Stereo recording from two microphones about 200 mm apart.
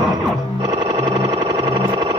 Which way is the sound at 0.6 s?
20° right (ahead or behind).